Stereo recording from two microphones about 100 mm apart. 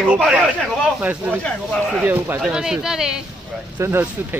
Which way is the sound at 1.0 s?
20° right (ahead or behind).